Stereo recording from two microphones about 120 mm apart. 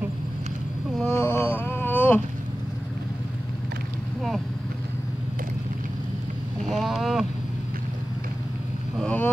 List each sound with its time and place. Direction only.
1.0 s humming: 20° left (ahead or behind)
6.7 s vehicle: centre (ahead or behind)
9.0 s vehicle: 15° left (ahead or behind)